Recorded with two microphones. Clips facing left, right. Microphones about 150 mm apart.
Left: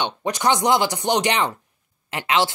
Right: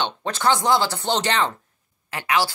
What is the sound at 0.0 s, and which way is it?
Speech, 15° left (ahead or behind).